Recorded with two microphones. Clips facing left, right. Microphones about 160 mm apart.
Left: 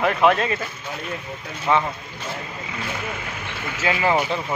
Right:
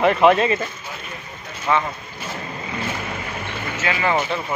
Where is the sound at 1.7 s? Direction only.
25° left (ahead or behind).